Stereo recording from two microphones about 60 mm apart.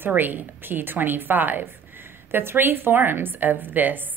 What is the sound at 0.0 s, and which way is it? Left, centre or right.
A woman's voice, right.